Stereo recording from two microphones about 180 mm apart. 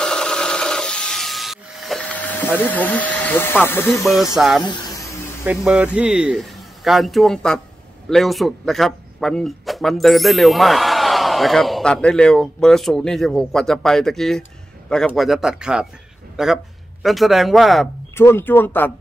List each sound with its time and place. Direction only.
0.0 s tools: 5° left (ahead or behind)
4.0 s speech: centre (ahead or behind)
4.6 s a sound: 25° left (ahead or behind)
5.6 s speech: 5° right (ahead or behind)
18.1 s speech: 15° left (ahead or behind)